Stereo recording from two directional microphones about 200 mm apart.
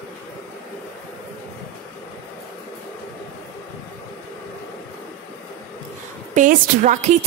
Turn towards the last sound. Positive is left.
turn(degrees=-40)  # may be behind; listen again after turning